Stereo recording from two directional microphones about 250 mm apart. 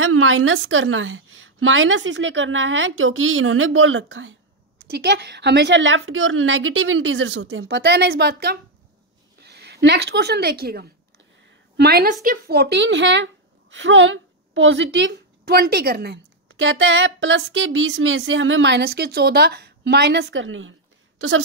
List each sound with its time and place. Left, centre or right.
0.0 s a woman's voice: right